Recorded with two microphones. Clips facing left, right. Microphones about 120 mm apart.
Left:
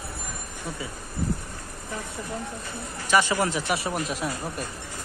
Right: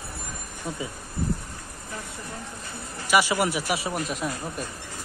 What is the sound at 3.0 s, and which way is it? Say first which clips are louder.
Speech: even; 10° right (ahead or behind).